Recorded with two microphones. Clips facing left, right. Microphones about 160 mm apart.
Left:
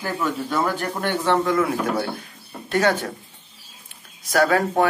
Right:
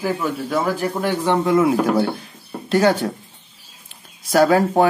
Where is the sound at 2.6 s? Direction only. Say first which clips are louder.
Right 4 dB; 30° right (ahead or behind).